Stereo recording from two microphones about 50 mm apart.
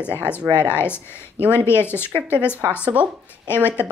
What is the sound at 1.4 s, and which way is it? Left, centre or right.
Speech, right.